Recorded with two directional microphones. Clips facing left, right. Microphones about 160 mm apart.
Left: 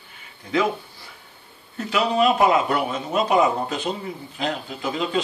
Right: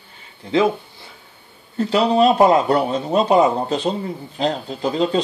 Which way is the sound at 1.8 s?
35° right (ahead or behind).